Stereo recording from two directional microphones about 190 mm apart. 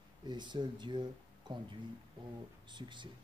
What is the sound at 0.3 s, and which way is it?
Speech, 25° right (ahead or behind).